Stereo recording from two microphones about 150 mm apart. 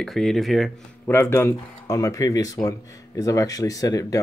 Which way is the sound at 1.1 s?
15° left (ahead or behind).